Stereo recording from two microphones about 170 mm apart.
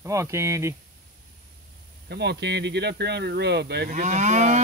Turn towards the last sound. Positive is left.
turn(degrees=-45)  # may be behind; listen again after turning